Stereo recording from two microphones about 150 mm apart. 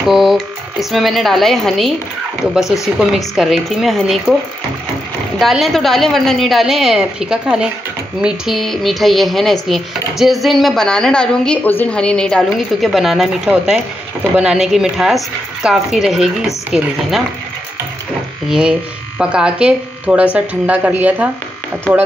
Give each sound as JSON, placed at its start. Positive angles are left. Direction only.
{"t": 0.0, "sound": "speech", "side_deg": 0}
{"t": 5.4, "sound": "speech", "side_deg": 0}
{"t": 18.5, "sound": "speech", "side_deg": -5}